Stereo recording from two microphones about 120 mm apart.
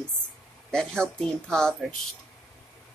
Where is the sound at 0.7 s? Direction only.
5° left (ahead or behind).